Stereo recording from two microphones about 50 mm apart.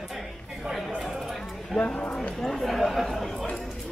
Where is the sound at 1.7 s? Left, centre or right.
Left.